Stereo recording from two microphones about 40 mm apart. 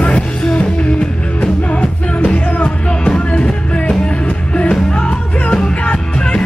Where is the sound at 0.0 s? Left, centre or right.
Left.